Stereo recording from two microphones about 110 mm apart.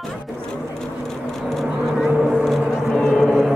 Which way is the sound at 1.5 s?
Centre (ahead or behind).